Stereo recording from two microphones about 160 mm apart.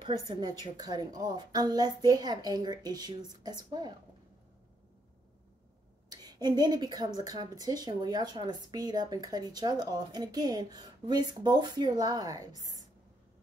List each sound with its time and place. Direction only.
0.0 s speech: 25° right (ahead or behind)
6.0 s a woman's voice: 25° right (ahead or behind)